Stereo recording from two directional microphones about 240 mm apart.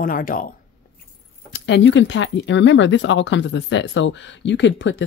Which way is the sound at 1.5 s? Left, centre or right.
Left.